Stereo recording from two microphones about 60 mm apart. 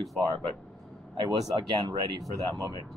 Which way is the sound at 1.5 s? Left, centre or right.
Right.